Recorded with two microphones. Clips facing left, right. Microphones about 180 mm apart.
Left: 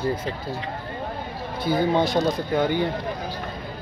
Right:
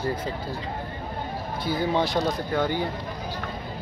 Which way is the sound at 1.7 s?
20° left (ahead or behind).